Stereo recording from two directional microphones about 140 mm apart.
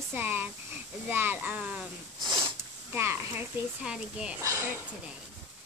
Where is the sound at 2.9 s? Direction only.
15° right (ahead or behind).